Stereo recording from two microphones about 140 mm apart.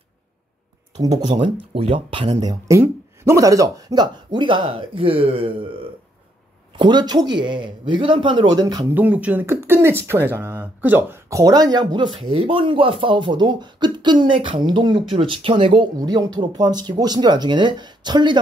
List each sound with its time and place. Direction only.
0.9 s speech: 30° right (ahead or behind)
2.4 s speech: 20° right (ahead or behind); by 5.7 s 40° right (ahead or behind)
6.8 s speech: 35° right (ahead or behind)
8.9 s speech: 10° right (ahead or behind); by 18.4 s 30° right (ahead or behind)